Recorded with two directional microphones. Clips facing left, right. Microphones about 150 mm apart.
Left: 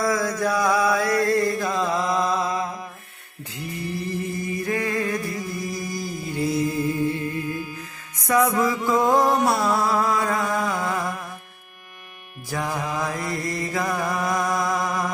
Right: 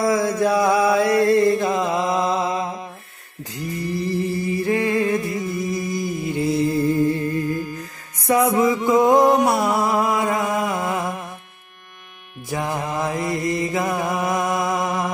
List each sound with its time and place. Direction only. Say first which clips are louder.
0.0 s mantra: right 4 dB; 25° right (ahead or behind)
4.0 s music: right 7 dB; 35° right (ahead or behind)
8.3 s music: right 3 dB; 25° right (ahead or behind)
12.4 s mantra: right 2 dB; 20° right (ahead or behind)